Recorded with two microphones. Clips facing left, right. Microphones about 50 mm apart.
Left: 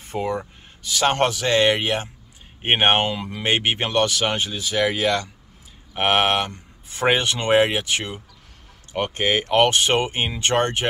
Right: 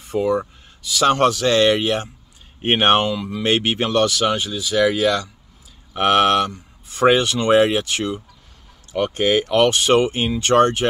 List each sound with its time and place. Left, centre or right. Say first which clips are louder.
0.1 s a man's voice: right 6 dB; left
1.3 s speech: right 3 dB; centre